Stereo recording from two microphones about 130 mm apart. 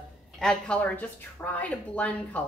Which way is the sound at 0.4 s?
5° left (ahead or behind).